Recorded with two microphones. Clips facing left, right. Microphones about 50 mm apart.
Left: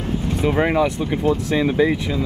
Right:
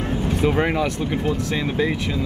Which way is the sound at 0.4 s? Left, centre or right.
Centre.